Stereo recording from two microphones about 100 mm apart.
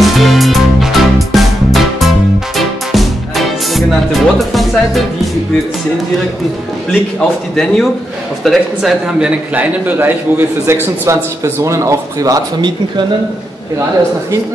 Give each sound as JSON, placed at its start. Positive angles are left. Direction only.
{"t": 0.0, "sound": "music", "side_deg": 0}
{"t": 7.2, "sound": "a man's voice", "side_deg": 5}
{"t": 9.0, "sound": "a man's voice", "side_deg": -15}